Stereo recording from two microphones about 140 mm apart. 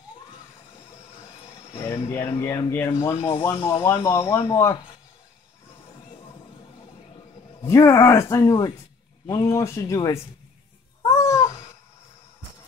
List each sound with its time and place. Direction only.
1.8 s speech: 20° left (ahead or behind)
7.6 s speech: 20° left (ahead or behind)
11.1 s cat: 20° left (ahead or behind)